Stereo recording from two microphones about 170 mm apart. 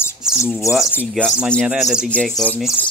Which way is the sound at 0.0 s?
15° left (ahead or behind).